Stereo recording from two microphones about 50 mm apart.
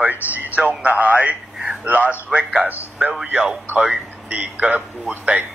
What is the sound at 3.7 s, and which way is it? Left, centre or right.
Speech, right.